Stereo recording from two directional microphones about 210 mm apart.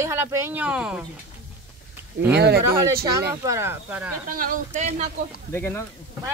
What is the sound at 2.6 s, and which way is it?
Speech, 15° right (ahead or behind).